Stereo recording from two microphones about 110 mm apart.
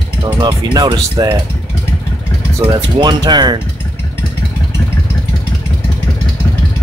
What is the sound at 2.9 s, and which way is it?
Speech, 40° right (ahead or behind).